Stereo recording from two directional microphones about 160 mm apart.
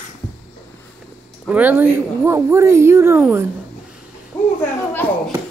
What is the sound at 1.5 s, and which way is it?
Speech, 10° right (ahead or behind).